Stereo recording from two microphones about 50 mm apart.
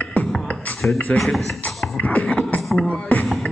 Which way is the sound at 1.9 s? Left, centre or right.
Left.